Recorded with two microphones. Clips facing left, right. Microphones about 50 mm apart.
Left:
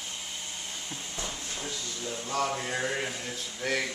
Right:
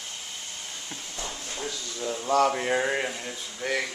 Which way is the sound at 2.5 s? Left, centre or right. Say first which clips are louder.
Right 6 dB; right.